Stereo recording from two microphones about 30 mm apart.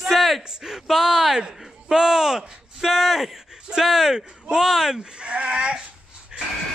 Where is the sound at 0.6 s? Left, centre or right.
Centre.